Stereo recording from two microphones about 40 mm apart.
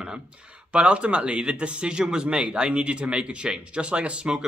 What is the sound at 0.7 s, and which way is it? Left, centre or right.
Speech, right.